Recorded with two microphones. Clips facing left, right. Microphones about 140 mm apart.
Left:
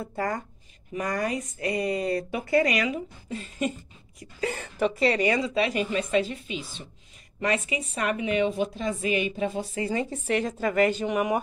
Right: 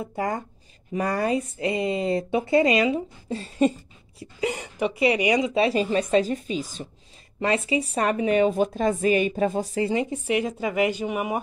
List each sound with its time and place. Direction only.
0.0 s speech: 20° right (ahead or behind)
0.9 s speech: 30° right (ahead or behind)
4.4 s speech: 15° right (ahead or behind); by 6.9 s 40° right (ahead or behind)
7.3 s speech: 30° right (ahead or behind)
9.8 s speech: 20° right (ahead or behind)